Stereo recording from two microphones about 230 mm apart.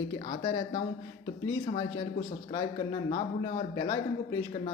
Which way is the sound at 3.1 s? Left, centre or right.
Left.